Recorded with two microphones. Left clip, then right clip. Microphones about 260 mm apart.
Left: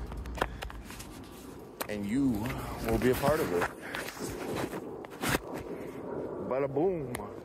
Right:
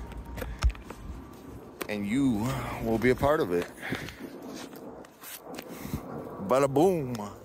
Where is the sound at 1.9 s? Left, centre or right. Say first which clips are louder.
Right 3 dB; centre.